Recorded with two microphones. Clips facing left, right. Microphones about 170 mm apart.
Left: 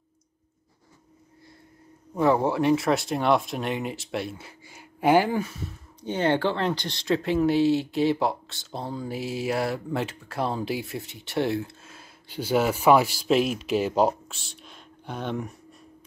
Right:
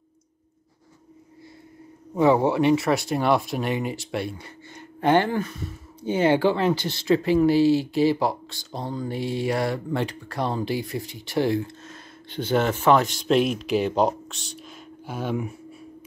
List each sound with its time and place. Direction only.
2.1 s speech: centre (ahead or behind)